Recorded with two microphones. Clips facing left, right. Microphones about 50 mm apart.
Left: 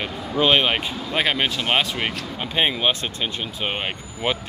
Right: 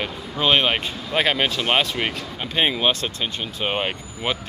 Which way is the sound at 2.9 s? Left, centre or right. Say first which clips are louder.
Right 1 dB; centre.